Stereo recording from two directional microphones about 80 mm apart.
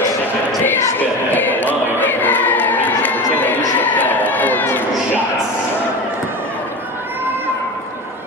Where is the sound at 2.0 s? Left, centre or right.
Left.